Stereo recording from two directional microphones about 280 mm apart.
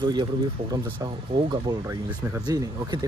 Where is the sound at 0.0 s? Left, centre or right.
Centre.